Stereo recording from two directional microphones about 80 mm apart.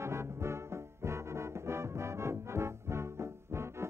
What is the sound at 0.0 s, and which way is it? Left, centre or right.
Music, right.